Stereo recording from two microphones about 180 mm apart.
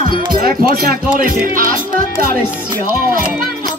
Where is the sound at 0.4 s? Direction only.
55° right (ahead or behind).